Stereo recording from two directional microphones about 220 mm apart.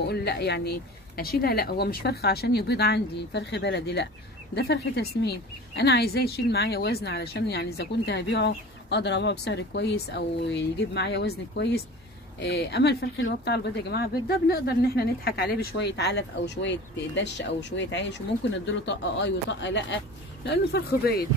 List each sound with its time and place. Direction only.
0.0 s speech: 50° left (ahead or behind)